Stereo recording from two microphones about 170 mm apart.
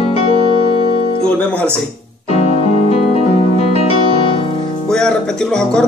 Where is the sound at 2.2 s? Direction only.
35° left (ahead or behind).